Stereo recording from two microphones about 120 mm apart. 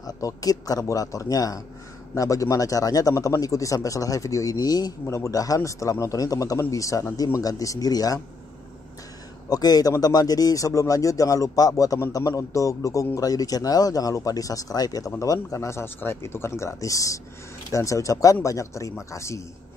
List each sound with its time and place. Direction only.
0.0 s a man's voice: 30° left (ahead or behind)
9.5 s a man's voice: 30° left (ahead or behind)